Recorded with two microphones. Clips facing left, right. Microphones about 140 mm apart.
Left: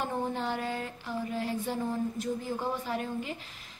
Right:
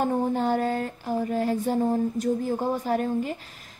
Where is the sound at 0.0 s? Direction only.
45° right (ahead or behind).